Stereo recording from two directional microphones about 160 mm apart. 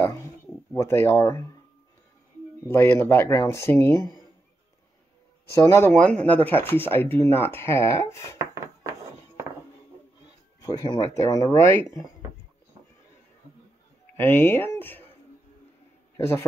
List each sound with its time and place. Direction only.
0.0 s a sound: 15° left (ahead or behind)
0.7 s speech: 15° left (ahead or behind)
2.7 s speech: 15° left (ahead or behind)
5.5 s speech: 20° left (ahead or behind)
6.1 s speech: 35° right (ahead or behind)
6.5 s speech: 15° left (ahead or behind)
10.6 s speech: 25° left (ahead or behind)
14.1 s speech: 15° left (ahead or behind)
16.2 s speech: 15° left (ahead or behind)